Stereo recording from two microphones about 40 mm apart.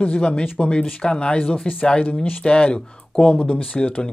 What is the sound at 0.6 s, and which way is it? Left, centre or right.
Speech, left.